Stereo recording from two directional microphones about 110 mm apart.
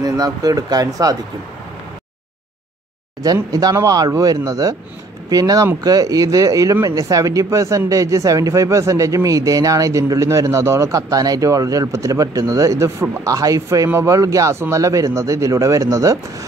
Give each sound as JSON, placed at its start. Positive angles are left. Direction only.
{"t": 0.0, "sound": "speech", "side_deg": -35}
{"t": 3.5, "sound": "a man's voice", "side_deg": -35}